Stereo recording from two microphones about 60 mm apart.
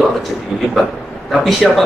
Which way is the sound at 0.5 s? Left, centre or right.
Centre.